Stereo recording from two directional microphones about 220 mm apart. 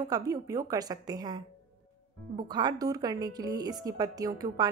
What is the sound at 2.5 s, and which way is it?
A woman's voice, 20° right (ahead or behind).